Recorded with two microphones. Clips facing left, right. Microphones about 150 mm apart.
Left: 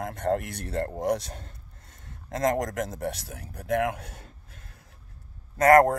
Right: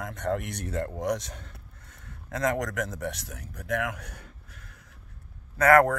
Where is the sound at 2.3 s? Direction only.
45° left (ahead or behind).